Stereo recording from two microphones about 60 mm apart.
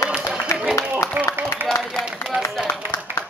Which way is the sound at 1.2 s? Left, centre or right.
Right.